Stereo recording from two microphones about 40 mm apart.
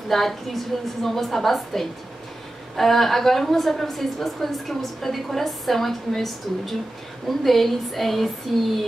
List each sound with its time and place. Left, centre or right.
0.1 s a woman's voice: centre